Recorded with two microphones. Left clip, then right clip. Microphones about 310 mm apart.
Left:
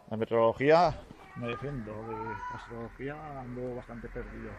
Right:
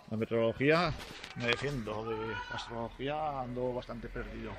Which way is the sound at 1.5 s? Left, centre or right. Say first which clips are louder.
Right 5 dB; right.